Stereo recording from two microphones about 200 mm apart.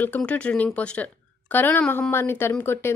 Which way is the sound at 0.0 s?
5° left (ahead or behind).